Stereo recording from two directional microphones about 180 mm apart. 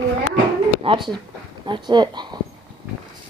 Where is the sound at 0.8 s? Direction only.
30° right (ahead or behind).